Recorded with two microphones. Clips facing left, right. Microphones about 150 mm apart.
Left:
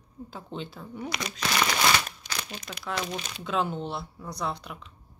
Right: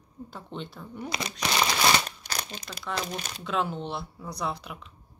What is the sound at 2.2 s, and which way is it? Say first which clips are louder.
Crumpling: right 1 dB; 60° right (ahead or behind).